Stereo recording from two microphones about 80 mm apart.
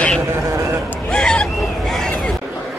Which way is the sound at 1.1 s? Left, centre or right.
Centre.